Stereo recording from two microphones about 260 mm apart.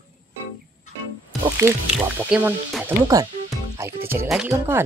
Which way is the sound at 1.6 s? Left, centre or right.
Centre.